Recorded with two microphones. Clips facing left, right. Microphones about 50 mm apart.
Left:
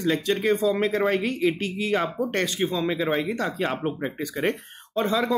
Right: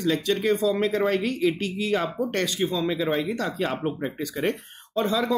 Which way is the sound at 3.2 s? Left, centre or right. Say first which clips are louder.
Left 1 dB; left.